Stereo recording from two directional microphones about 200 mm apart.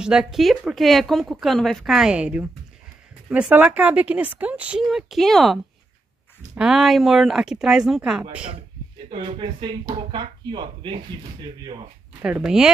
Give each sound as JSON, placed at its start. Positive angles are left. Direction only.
{"t": 0.0, "sound": "speech", "side_deg": -5}
{"t": 9.1, "sound": "speech", "side_deg": -25}
{"t": 12.2, "sound": "speech", "side_deg": -5}